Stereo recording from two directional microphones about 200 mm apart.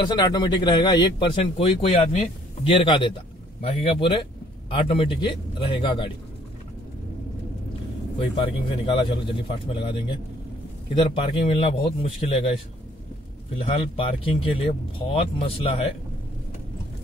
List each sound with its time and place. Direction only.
0.1 s a man's voice: 20° left (ahead or behind)
8.2 s a man's voice: 25° left (ahead or behind)
13.6 s a man's voice: 25° left (ahead or behind)